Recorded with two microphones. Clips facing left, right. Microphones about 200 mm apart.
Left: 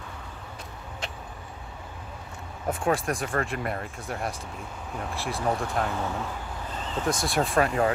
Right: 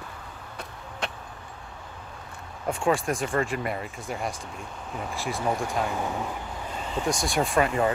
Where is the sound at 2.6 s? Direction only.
Centre (ahead or behind).